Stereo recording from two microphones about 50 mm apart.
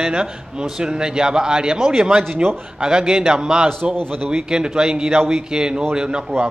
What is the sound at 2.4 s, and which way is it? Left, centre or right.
Speech, right.